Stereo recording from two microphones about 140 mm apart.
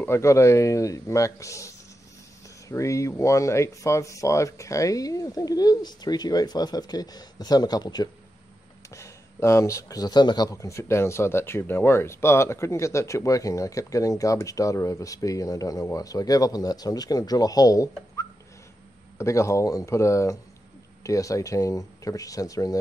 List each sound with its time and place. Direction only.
0.0 s speech: 20° left (ahead or behind)
2.7 s speech: 20° left (ahead or behind)